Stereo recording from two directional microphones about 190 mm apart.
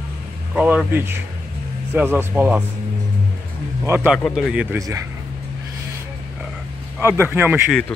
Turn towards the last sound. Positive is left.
turn(degrees=-10)  # may be behind; listen again after turning